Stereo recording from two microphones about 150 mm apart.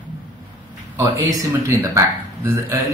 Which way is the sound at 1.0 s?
20° right (ahead or behind).